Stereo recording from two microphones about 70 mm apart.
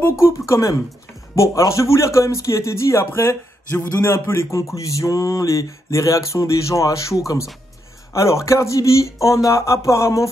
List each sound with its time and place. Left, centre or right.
0.0 s a man's voice: left